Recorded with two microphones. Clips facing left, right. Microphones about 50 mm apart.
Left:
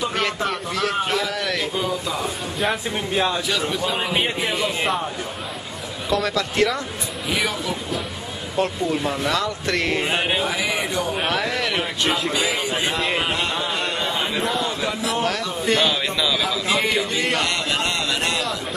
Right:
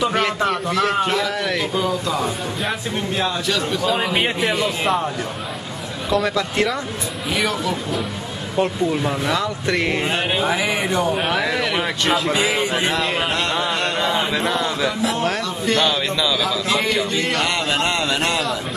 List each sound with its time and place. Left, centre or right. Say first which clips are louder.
0.1 s a sound: right 4 dB; centre
0.7 s speech: right 5 dB; right
1.4 s a sound: right 2 dB; centre
1.8 s a man's voice: right 3 dB; centre
6.0 s a man's voice: right 2 dB; centre
9.9 s a man's voice: right 1 dB; centre
10.5 s speech: right 3 dB; centre
11.1 s a man's voice: right 2 dB; centre
12.4 s speech: right 3 dB; right
13.0 s a man's voice: right 1 dB; centre
13.3 s a sound: right 3 dB; right
14.5 s a man's voice: right 3 dB; right
15.6 s a man's voice: right 1 dB; centre
17.8 s a man's voice: right 3 dB; centre